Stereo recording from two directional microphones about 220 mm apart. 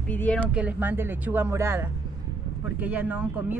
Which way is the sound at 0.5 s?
5° right (ahead or behind).